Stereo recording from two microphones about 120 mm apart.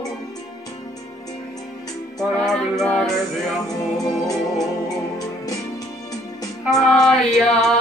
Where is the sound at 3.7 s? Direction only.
30° left (ahead or behind).